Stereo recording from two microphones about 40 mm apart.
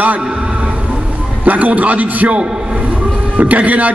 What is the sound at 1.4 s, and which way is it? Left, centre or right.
Speech, right.